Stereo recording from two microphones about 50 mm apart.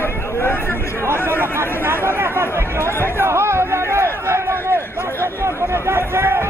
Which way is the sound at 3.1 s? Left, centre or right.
Right.